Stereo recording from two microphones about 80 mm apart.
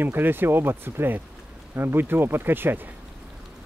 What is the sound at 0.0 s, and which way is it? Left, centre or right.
Speech, right.